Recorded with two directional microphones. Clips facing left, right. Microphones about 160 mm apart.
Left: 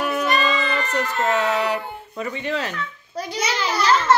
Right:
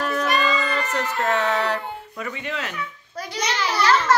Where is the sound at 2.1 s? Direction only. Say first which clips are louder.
Left 6 dB; 30° left (ahead or behind).